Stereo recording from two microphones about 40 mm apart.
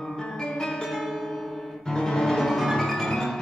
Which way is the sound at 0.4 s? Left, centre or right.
Centre.